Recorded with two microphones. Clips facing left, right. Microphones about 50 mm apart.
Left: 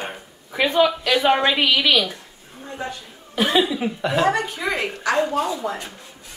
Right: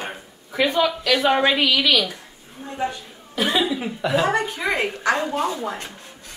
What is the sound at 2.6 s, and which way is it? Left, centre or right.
Speech, centre.